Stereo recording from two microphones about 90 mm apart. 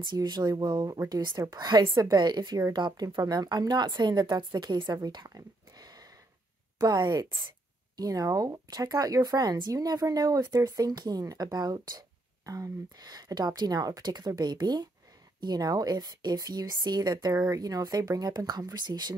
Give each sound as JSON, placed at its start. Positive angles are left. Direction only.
{"t": 0.0, "sound": "a woman's voice", "side_deg": -50}
{"t": 4.9, "sound": "a sound", "side_deg": -50}
{"t": 6.8, "sound": "speech", "side_deg": -50}